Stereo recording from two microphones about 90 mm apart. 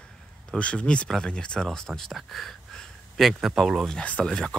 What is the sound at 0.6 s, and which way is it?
Speech, 10° left (ahead or behind).